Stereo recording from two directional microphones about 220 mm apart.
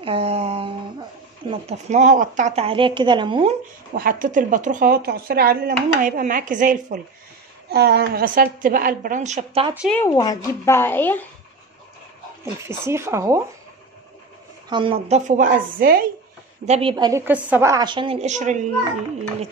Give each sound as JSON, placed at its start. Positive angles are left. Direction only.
{"t": 0.0, "sound": "a sound", "side_deg": -25}
{"t": 1.5, "sound": "a woman's voice", "side_deg": -30}
{"t": 3.9, "sound": "a woman's voice", "side_deg": -40}
{"t": 7.7, "sound": "a woman's voice", "side_deg": -45}
{"t": 9.8, "sound": "speech", "side_deg": 5}
{"t": 10.0, "sound": "speech", "side_deg": 15}
{"t": 12.5, "sound": "speech", "side_deg": -10}
{"t": 14.7, "sound": "a woman's voice", "side_deg": -25}
{"t": 16.6, "sound": "a woman's voice", "side_deg": -30}
{"t": 16.9, "sound": "a woman's voice", "side_deg": -15}